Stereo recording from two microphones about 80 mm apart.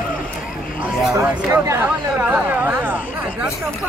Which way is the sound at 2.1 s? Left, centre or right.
Right.